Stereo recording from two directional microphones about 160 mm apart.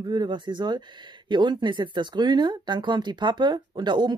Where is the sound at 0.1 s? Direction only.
30° right (ahead or behind).